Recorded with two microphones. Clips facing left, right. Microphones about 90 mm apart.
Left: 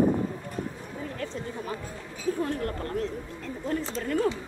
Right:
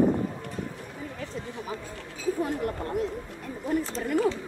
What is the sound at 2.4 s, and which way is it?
Speech, 20° right (ahead or behind).